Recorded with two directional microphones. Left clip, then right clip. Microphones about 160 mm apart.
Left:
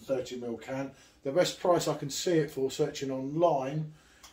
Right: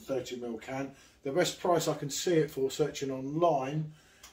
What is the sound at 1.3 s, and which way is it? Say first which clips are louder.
Speech: left 2 dB; 15° left (ahead or behind).